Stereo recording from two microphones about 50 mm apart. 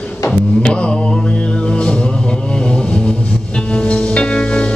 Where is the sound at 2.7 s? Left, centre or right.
Centre.